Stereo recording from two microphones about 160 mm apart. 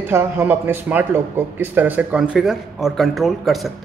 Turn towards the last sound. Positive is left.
turn(degrees=0)  # may be behind; listen again after turning